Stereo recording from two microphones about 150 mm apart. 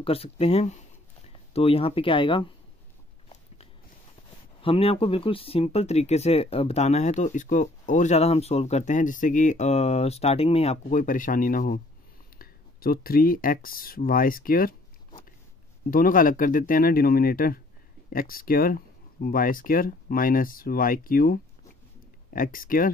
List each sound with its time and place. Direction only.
0.0 s speech: 40° left (ahead or behind)
4.6 s speech: 40° left (ahead or behind); by 14.8 s 75° left (ahead or behind)
15.9 s speech: 70° left (ahead or behind)